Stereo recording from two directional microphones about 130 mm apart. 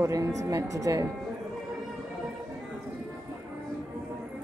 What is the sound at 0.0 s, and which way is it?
Speech, 25° right (ahead or behind).